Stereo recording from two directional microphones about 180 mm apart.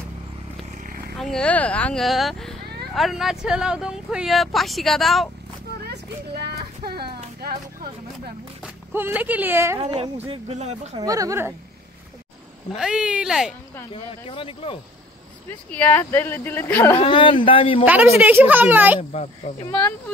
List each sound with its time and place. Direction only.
0.7 s vehicle: 50° right (ahead or behind)
1.1 s speech: centre (ahead or behind)
6.4 s a sound: 65° right (ahead or behind)
7.4 s vehicle: 60° right (ahead or behind)
8.6 s speech: 10° right (ahead or behind)
9.8 s speech: 35° right (ahead or behind)
11.0 s speech: 20° right (ahead or behind)
12.7 s speech: 5° right (ahead or behind)
13.9 s speech: 30° left (ahead or behind)
15.7 s speech: 10° left (ahead or behind)
17.0 s speech: 30° left (ahead or behind)
17.8 s speech: 10° right (ahead or behind)
18.9 s speech: 25° left (ahead or behind)